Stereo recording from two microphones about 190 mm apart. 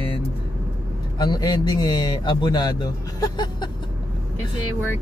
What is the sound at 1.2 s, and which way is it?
Speech, 20° left (ahead or behind).